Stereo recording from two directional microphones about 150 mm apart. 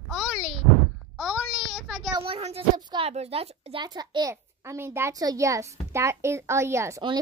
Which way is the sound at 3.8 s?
25° right (ahead or behind).